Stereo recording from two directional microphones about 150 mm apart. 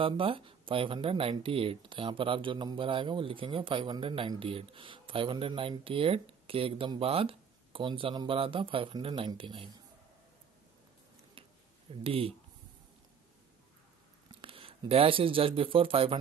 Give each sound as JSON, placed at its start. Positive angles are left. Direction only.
{"t": 0.0, "sound": "speech", "side_deg": -35}
{"t": 12.0, "sound": "speech", "side_deg": -40}
{"t": 14.4, "sound": "speech", "side_deg": -40}